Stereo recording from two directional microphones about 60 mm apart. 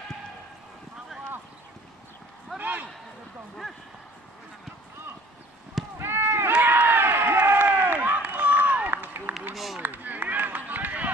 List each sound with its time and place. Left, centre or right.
2.6 s a man's voice: right
5.9 s run: right
6.6 s run: right